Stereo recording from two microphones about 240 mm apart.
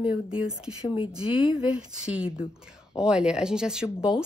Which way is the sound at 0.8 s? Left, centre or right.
Left.